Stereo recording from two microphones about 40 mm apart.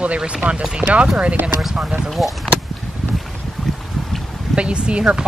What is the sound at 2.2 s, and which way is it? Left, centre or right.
Speech, centre.